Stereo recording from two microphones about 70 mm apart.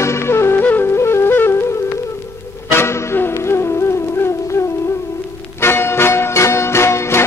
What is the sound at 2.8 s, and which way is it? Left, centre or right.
Music, left.